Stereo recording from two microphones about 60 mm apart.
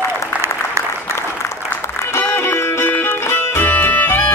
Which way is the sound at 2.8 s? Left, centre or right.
Left.